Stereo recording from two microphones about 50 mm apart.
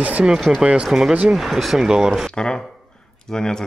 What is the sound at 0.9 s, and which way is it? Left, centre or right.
Speech, centre.